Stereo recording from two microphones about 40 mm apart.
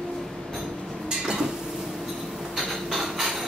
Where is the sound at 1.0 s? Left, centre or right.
Centre.